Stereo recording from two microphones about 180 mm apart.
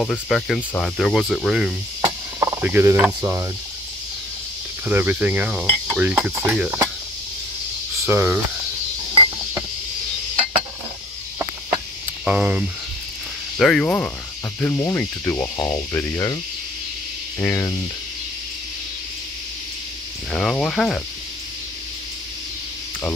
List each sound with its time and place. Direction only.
0.0 s speech: 5° left (ahead or behind)
2.0 s cricket: 20° right (ahead or behind)
4.8 s cricket: 10° right (ahead or behind)
8.0 s speech: 15° right (ahead or behind)
12.3 s cricket: 10° right (ahead or behind)
13.6 s speech: 5° left (ahead or behind)
17.4 s speech: 15° left (ahead or behind)
20.2 s speech: 5° left (ahead or behind)